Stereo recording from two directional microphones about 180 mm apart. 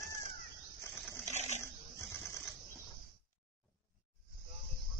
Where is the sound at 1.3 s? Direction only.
40° left (ahead or behind).